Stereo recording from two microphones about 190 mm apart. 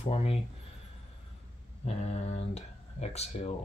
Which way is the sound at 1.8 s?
35° left (ahead or behind).